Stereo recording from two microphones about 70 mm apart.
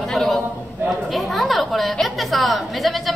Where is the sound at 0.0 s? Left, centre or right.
Centre.